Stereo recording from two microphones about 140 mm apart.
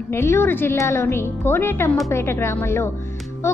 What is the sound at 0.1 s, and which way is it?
A woman's voice, 20° left (ahead or behind).